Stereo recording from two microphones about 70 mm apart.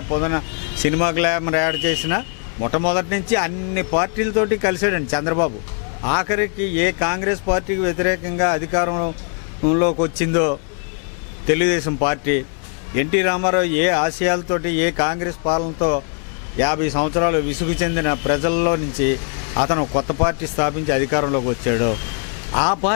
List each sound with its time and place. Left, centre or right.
0.1 s speech: left